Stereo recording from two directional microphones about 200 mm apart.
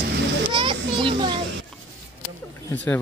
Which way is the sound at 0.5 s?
25° right (ahead or behind).